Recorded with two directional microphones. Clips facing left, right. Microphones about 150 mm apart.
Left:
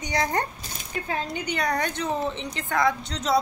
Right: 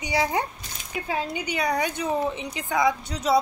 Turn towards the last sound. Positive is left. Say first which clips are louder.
# right 2 dB
turn(degrees=-10)  # may be behind; listen again after turning